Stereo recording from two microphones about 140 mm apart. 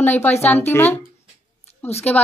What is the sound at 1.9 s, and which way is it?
Speech, 50° left (ahead or behind).